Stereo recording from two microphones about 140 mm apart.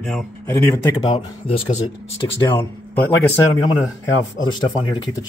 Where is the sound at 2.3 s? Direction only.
15° left (ahead or behind).